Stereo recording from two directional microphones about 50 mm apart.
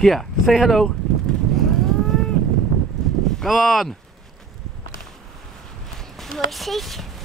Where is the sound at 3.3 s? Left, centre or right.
Centre.